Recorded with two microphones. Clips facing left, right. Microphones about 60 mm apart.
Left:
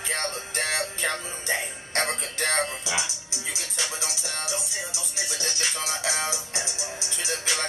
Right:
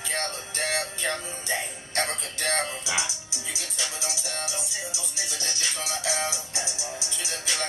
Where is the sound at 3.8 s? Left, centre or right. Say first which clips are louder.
Left 1 dB; left.